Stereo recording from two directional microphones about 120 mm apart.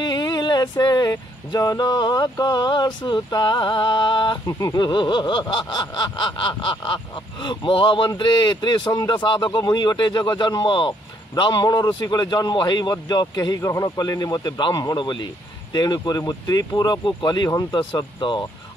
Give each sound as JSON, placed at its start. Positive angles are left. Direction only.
{"t": 0.0, "sound": "a sound", "side_deg": 35}
{"t": 17.5, "sound": "speech", "side_deg": 30}
{"t": 17.7, "sound": "speech", "side_deg": 45}